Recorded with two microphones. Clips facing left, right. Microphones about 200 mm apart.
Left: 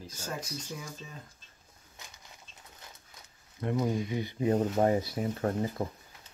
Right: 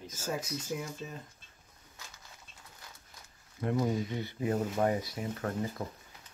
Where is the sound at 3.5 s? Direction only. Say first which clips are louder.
Even; centre (ahead or behind).